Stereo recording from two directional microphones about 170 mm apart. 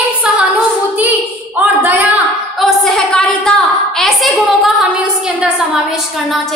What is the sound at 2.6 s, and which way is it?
A woman's voice, centre (ahead or behind).